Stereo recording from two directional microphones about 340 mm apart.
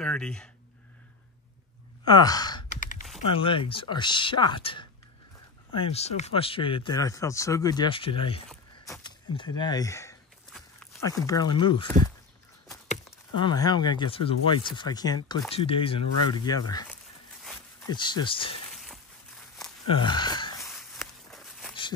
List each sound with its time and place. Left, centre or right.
0.0 s speech: centre
2.0 s speech: centre
5.7 s speech: centre
8.5 s a sound: centre
12.8 s speech: centre
17.8 s speech: centre
19.9 s a sound: centre